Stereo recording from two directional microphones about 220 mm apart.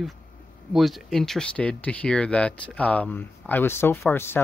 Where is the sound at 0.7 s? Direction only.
Centre (ahead or behind).